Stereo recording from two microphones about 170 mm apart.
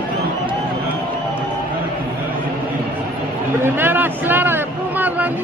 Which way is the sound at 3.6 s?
10° right (ahead or behind).